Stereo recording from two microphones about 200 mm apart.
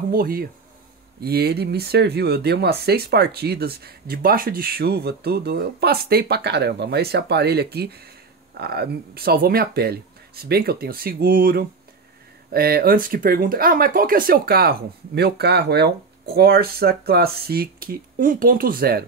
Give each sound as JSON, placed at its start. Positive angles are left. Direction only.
{"t": 0.1, "sound": "speech", "side_deg": -45}